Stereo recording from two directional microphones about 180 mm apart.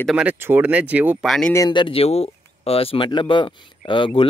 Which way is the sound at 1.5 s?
25° left (ahead or behind).